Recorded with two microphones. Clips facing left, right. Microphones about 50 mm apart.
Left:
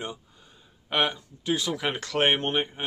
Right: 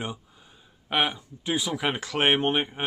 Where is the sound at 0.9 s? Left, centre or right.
Centre.